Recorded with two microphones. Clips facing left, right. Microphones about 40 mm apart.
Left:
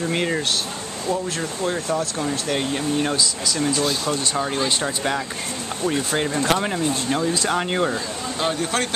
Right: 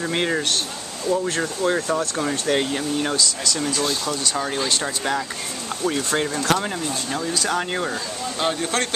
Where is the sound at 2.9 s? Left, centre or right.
Centre.